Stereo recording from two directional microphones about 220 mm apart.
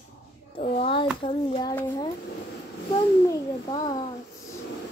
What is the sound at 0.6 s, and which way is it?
Speech, 25° left (ahead or behind).